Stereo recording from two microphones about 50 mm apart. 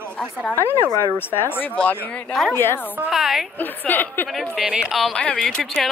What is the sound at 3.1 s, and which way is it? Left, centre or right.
Speech, centre.